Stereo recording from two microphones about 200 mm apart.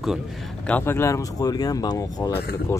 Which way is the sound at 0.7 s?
10° left (ahead or behind).